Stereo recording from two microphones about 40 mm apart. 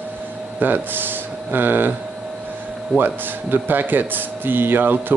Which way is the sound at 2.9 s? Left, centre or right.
Right.